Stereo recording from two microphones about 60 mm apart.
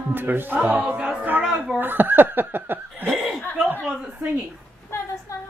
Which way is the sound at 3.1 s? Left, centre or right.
Centre.